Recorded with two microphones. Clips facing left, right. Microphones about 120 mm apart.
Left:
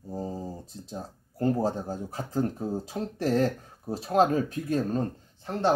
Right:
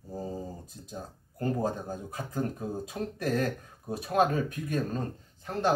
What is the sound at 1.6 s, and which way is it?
Speech, 30° left (ahead or behind).